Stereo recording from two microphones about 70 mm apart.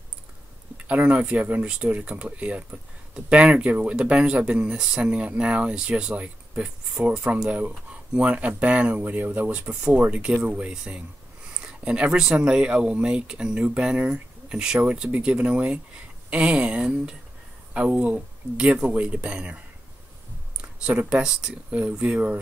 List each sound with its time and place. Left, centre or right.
0.7 s speech: centre
20.8 s speech: centre